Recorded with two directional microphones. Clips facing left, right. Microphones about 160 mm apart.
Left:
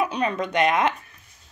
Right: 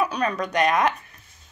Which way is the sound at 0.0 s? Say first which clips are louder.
Even; 20° left (ahead or behind).